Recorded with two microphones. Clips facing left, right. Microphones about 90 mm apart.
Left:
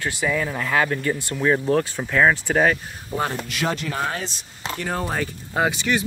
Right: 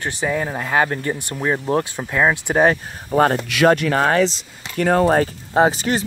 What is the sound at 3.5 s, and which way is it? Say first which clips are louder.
Speech: right 10 dB; 65° right (ahead or behind).